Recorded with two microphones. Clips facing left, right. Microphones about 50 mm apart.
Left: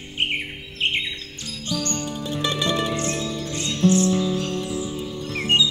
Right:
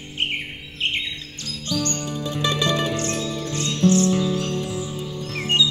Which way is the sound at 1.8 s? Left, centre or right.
Left.